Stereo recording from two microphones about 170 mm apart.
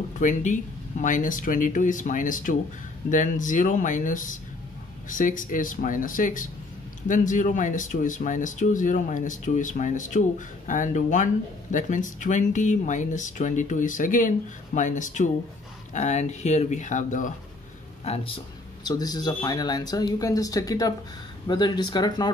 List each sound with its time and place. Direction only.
0.2 s speech: 45° left (ahead or behind)
18.0 s speech: 35° left (ahead or behind)
18.9 s speech: 25° left (ahead or behind)